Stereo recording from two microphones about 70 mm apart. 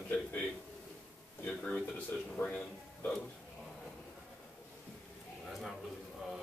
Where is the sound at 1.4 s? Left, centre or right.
Centre.